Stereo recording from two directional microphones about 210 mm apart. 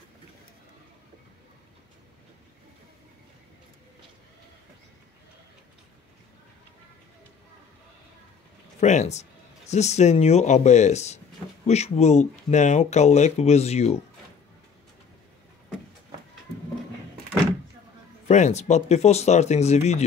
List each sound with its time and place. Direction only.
8.7 s speech: 30° left (ahead or behind)
18.3 s speech: 35° left (ahead or behind)